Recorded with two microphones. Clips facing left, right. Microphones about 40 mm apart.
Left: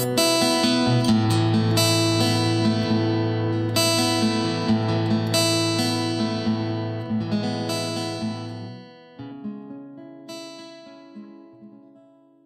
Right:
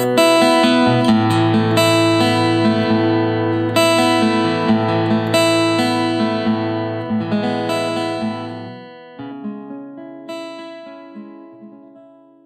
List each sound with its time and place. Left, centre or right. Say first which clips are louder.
0.0 s music: right 9 dB; right